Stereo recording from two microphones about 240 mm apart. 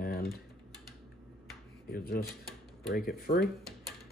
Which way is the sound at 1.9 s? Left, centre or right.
Left.